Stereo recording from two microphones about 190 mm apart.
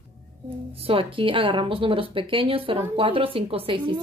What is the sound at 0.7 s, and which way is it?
Speech, 30° right (ahead or behind).